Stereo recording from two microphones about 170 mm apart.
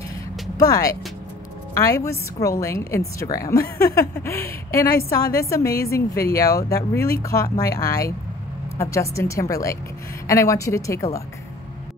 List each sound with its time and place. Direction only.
0.6 s a woman's voice: 20° left (ahead or behind)